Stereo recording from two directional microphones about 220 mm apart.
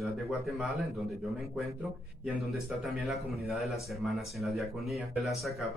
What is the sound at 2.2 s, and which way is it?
Speech, centre (ahead or behind).